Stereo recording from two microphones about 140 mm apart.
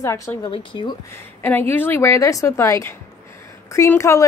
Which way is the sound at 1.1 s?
15° left (ahead or behind).